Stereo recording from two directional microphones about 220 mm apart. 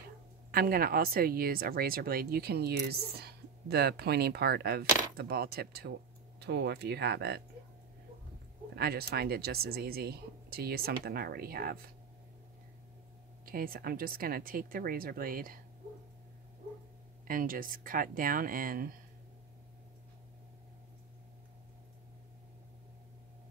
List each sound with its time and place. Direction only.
0.5 s speech: 40° right (ahead or behind)
8.7 s speech: 45° right (ahead or behind)
13.5 s a woman's voice: 40° right (ahead or behind)
17.3 s a woman's voice: 40° right (ahead or behind)